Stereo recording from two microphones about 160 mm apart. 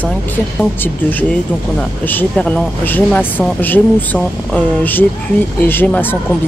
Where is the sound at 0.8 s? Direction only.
10° left (ahead or behind).